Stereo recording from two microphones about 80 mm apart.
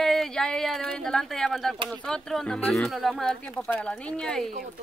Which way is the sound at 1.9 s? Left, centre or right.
Centre.